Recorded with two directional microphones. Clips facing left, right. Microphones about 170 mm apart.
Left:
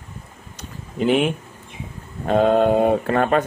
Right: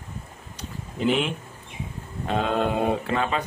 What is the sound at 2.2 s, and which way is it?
Speech, 50° left (ahead or behind).